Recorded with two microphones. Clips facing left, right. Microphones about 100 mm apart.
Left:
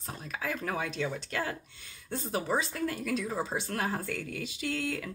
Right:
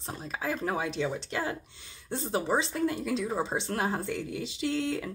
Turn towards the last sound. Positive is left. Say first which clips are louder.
# right 4 dB
turn(degrees=-25)  # may be behind; listen again after turning